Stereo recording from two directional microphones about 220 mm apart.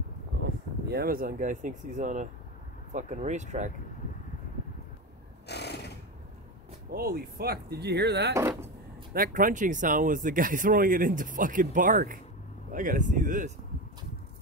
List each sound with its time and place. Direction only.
0.8 s speech: 45° right (ahead or behind)
5.5 s a sound: 50° left (ahead or behind)
6.9 s speech: 45° right (ahead or behind)
9.1 s speech: 40° right (ahead or behind)